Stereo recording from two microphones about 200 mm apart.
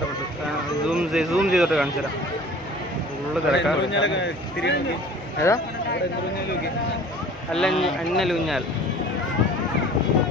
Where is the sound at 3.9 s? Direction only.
65° left (ahead or behind).